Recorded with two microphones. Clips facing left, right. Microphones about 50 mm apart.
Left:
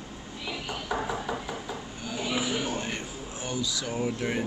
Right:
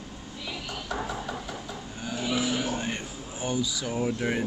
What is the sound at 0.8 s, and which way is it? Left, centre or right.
Music, centre.